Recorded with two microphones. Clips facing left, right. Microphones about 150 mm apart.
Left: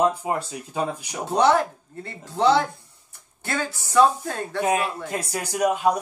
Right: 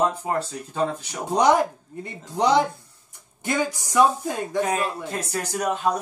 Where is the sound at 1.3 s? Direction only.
15° right (ahead or behind).